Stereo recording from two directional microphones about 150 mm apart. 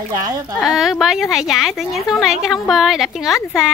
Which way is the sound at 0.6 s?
5° right (ahead or behind).